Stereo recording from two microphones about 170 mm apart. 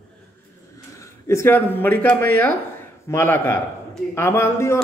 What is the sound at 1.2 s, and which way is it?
A man's voice, 15° left (ahead or behind).